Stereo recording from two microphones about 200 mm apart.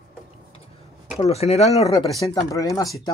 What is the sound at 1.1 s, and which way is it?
Speech, 30° left (ahead or behind).